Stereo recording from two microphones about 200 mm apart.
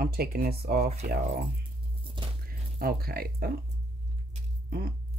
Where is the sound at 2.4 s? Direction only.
50° right (ahead or behind).